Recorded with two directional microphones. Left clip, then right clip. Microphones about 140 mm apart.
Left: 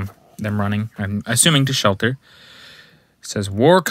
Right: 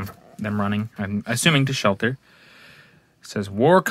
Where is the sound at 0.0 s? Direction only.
25° left (ahead or behind).